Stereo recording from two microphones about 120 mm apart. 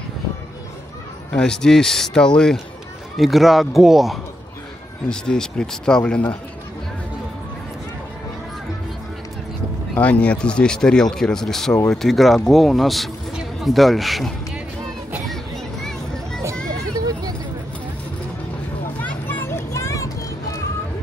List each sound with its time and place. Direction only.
1.3 s speech: 5° left (ahead or behind)
9.9 s a man's voice: 10° left (ahead or behind)
18.9 s a sound: 15° left (ahead or behind)